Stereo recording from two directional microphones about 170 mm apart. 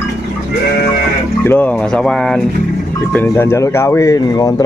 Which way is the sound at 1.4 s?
10° left (ahead or behind).